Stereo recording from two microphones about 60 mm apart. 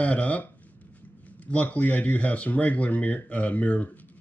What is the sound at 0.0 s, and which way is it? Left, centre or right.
Speech, left.